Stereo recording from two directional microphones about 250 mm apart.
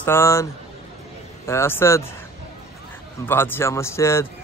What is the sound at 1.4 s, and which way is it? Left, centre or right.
Speech, centre.